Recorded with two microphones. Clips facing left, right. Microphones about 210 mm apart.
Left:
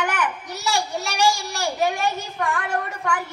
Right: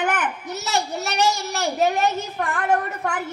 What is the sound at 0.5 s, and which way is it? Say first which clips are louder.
Speech: even; 20° right (ahead or behind).